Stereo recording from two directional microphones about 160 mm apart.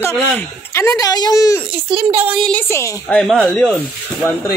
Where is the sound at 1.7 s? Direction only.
35° right (ahead or behind).